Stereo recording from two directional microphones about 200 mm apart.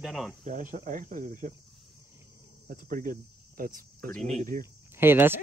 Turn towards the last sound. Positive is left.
turn(degrees=-10)  # may be behind; listen again after turning